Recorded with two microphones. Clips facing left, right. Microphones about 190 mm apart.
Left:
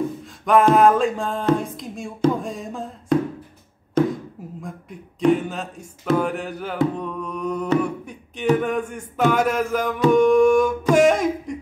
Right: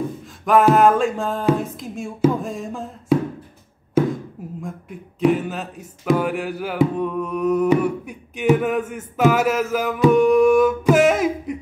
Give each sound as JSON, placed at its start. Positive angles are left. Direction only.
{"t": 0.2, "sound": "a sound", "side_deg": 0}
{"t": 4.0, "sound": "chopping", "side_deg": -5}
{"t": 4.6, "sound": "music", "side_deg": 0}